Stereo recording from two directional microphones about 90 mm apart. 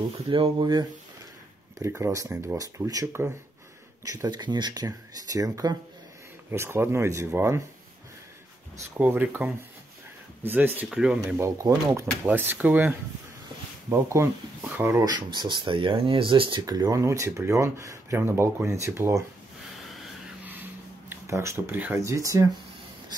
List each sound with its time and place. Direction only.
0.3 s speech: 60° right (ahead or behind)
1.8 s speech: 30° right (ahead or behind)
3.1 s speech: 25° right (ahead or behind)
4.0 s speech: 40° right (ahead or behind)
6.5 s speech: 25° right (ahead or behind)
8.9 s speech: 20° right (ahead or behind)
10.9 s speech: 10° right (ahead or behind)
11.3 s speech: 35° right (ahead or behind)
12.3 s speech: 20° right (ahead or behind)
13.8 s speech: 35° right (ahead or behind)
15.0 s speech: 55° right (ahead or behind); by 16.6 s 70° right (ahead or behind)
16.6 s speech: 40° right (ahead or behind)
21.1 s speech: 35° right (ahead or behind)